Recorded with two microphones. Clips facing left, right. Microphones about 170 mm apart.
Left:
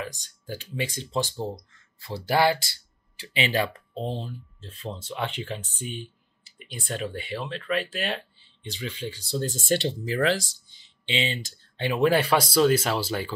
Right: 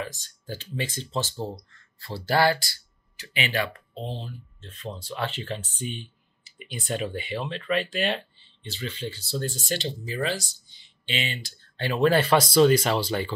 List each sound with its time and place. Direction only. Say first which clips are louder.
0.0 s speech: right 1 dB; 15° left (ahead or behind); by 4.6 s 40° left (ahead or behind)
4.6 s speech: even; 30° left (ahead or behind)
9.4 s speech: left 5 dB; 45° left (ahead or behind)
10.0 s speech: left 4 dB; 85° left
11.1 s speech: left 3 dB; 25° left (ahead or behind)
11.7 s speech: even; 15° left (ahead or behind)